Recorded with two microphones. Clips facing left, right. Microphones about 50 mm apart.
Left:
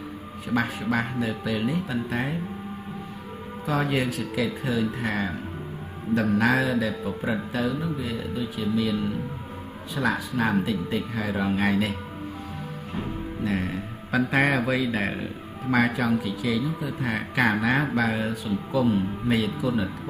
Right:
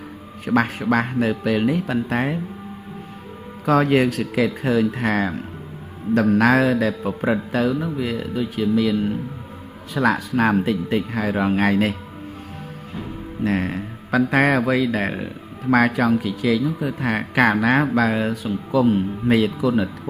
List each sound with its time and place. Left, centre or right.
0.5 s speech: right
3.6 s speech: right
8.9 s speech: right
9.9 s speech: right
13.4 s music: right
14.3 s speech: right